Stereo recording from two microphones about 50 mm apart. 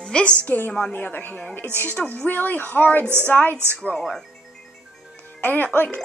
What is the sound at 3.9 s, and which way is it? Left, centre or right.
Speech, centre.